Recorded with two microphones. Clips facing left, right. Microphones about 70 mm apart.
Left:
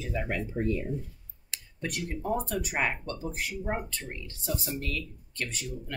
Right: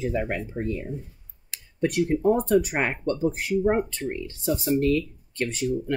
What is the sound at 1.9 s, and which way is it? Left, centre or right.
Speech, right.